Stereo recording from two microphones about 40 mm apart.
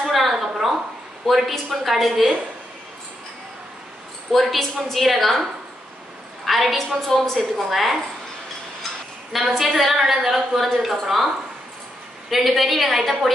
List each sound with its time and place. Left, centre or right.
0.0 s a sound: centre
1.2 s a woman's voice: centre
4.3 s a woman's voice: centre
6.4 s a sound: centre
6.8 s a woman's voice: centre
9.6 s a woman's voice: centre
12.3 s a woman's voice: centre